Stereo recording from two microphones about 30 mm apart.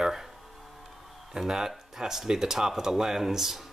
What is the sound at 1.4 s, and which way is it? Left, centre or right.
Speech, right.